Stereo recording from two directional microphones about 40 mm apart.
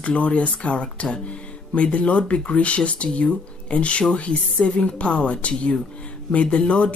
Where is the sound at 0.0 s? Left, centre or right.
Left.